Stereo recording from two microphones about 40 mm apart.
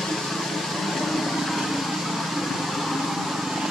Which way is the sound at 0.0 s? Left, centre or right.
Centre.